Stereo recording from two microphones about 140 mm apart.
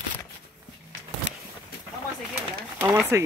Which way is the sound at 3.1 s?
20° right (ahead or behind).